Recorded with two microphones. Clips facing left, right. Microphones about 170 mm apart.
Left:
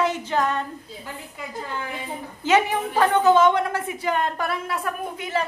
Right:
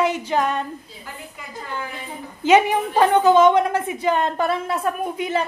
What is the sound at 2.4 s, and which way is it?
A woman's voice, 20° right (ahead or behind).